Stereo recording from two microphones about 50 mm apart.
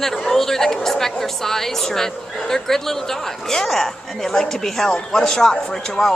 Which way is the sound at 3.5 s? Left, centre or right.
Centre.